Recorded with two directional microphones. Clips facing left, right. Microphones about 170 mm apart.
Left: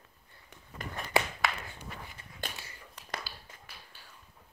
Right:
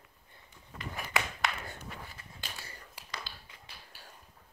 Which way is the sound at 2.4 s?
55° left (ahead or behind).